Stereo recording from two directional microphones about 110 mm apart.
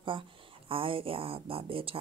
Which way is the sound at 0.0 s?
50° right (ahead or behind).